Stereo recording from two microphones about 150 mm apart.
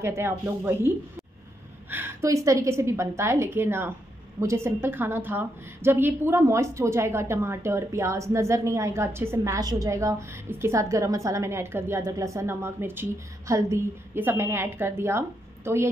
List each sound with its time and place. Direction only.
0.0 s a woman's voice: 15° right (ahead or behind)